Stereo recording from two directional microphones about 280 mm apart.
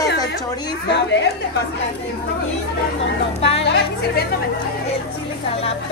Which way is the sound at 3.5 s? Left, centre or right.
Left.